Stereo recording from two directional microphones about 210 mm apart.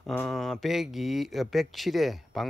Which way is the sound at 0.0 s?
5° left (ahead or behind).